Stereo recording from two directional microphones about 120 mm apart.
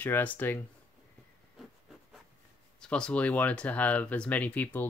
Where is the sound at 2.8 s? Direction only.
5° left (ahead or behind).